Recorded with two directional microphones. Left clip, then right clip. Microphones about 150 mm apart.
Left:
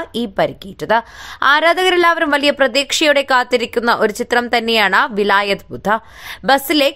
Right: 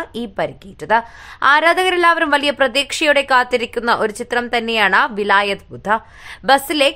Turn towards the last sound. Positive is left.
turn(degrees=30)  # may be behind; listen again after turning